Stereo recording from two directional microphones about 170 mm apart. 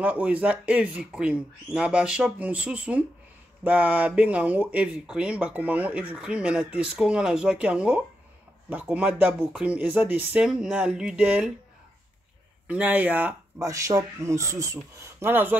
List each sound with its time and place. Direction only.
0.0 s speech: 10° right (ahead or behind)
12.6 s speech: 10° right (ahead or behind)